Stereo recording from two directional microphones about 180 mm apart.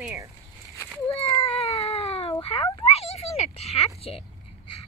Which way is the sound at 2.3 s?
30° left (ahead or behind).